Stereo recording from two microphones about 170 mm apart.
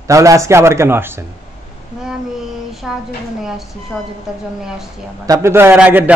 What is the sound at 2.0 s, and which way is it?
Child singing, centre (ahead or behind).